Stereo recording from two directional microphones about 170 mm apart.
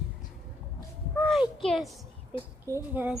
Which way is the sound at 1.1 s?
5° left (ahead or behind).